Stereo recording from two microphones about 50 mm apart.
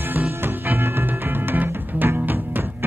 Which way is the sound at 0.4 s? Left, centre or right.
Right.